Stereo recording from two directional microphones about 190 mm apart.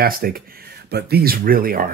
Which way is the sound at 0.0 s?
50° right (ahead or behind).